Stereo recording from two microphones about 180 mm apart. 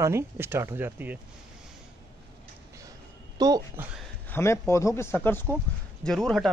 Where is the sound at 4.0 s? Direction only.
10° left (ahead or behind).